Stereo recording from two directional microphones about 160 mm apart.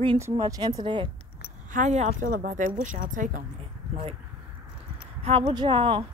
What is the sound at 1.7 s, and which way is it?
A woman's voice, 50° right (ahead or behind).